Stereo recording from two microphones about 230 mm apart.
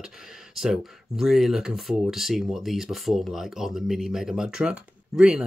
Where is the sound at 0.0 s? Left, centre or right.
Centre.